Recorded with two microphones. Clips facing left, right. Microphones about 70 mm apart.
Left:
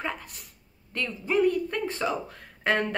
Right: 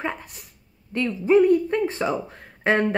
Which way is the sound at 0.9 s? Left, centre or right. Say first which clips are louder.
Right 8 dB; centre.